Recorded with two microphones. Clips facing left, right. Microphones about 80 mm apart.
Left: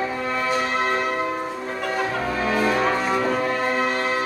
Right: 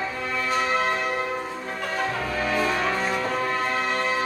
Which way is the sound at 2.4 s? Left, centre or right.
Centre.